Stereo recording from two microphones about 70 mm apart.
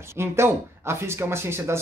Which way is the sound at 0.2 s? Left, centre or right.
Right.